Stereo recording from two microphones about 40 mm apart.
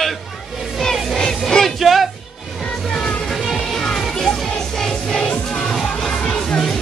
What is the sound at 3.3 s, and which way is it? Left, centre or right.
Music, centre.